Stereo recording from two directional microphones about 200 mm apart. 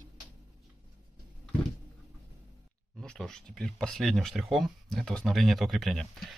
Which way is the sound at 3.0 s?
5° left (ahead or behind).